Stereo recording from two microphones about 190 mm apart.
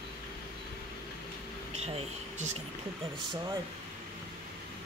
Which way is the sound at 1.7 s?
35° right (ahead or behind).